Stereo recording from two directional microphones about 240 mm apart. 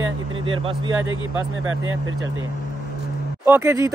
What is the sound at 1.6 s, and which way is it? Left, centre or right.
Speech, right.